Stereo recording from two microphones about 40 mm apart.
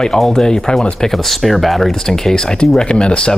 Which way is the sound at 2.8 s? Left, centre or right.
Left.